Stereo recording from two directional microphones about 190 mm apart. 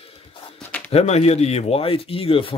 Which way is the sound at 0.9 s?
35° left (ahead or behind).